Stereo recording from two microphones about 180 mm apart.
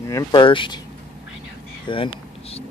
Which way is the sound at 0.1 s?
25° left (ahead or behind).